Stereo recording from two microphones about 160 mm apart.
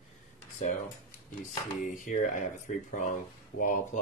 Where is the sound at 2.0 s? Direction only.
55° left (ahead or behind).